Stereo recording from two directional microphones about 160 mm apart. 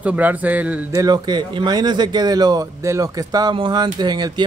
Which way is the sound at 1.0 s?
25° right (ahead or behind).